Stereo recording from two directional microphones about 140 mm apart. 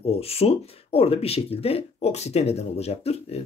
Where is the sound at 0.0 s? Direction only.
45° left (ahead or behind).